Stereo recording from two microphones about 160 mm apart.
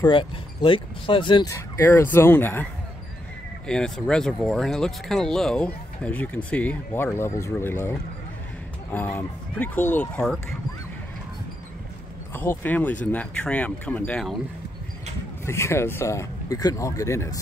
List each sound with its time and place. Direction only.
0.0 s speech: 30° left (ahead or behind)
1.5 s speech: 15° left (ahead or behind)
12.4 s speech: 10° left (ahead or behind)
15.4 s speech: 15° left (ahead or behind)